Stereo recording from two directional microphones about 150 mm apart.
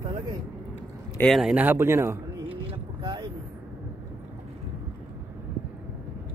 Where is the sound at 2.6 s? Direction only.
30° right (ahead or behind).